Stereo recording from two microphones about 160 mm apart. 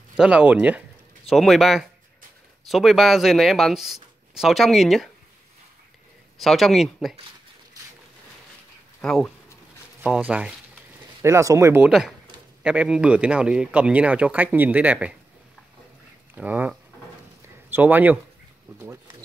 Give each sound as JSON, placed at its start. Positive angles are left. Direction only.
{"t": 0.2, "sound": "speech", "side_deg": -5}
{"t": 6.4, "sound": "speech", "side_deg": 0}
{"t": 9.0, "sound": "speech", "side_deg": 5}
{"t": 10.0, "sound": "speech", "side_deg": -10}
{"t": 11.2, "sound": "speech", "side_deg": -20}
{"t": 11.8, "sound": "speech", "side_deg": -5}
{"t": 16.3, "sound": "speech", "side_deg": -10}